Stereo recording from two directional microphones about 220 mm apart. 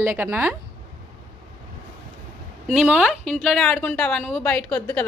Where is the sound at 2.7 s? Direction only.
5° right (ahead or behind).